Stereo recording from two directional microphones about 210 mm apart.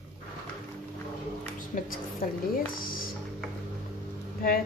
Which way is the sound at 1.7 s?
35° left (ahead or behind).